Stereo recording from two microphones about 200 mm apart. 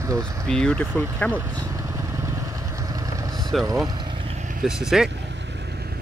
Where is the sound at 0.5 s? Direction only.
5° left (ahead or behind).